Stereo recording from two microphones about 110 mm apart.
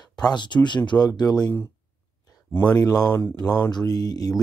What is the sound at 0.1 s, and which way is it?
Speech, 40° left (ahead or behind).